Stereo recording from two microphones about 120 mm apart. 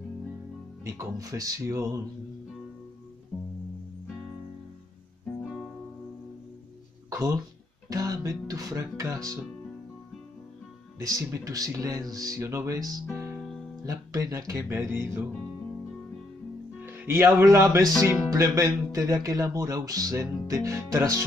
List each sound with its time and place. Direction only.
0.8 s speech: 30° right (ahead or behind)
3.3 s music: 10° left (ahead or behind)
7.1 s a sound: 25° right (ahead or behind)
7.9 s speech: 30° right (ahead or behind)
11.0 s speech: 30° right (ahead or behind)
13.1 s music: 20° right (ahead or behind)
13.8 s speech: 30° right (ahead or behind)
16.8 s speech: 20° right (ahead or behind)